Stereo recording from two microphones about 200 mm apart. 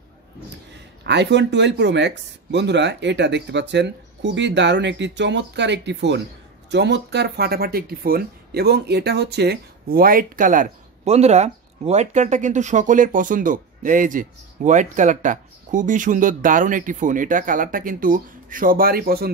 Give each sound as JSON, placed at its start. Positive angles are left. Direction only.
{"t": 1.0, "sound": "speech", "side_deg": -60}